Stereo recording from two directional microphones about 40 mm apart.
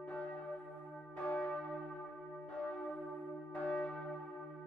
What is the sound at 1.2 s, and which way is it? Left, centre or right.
Church bell, left.